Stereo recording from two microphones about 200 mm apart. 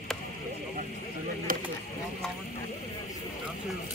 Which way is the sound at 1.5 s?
45° right (ahead or behind).